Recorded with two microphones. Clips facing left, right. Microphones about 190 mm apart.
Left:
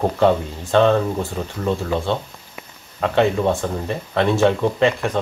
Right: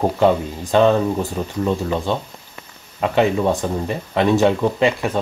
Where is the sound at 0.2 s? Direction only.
15° right (ahead or behind).